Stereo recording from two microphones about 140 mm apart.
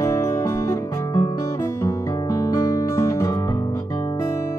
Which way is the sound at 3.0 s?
20° left (ahead or behind).